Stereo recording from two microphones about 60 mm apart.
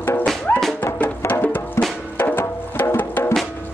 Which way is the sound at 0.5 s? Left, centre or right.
Left.